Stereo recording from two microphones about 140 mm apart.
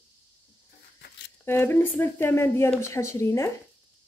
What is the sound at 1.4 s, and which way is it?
A woman's voice, 15° left (ahead or behind).